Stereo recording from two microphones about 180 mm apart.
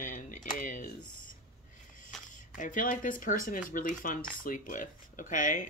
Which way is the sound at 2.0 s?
45° left (ahead or behind).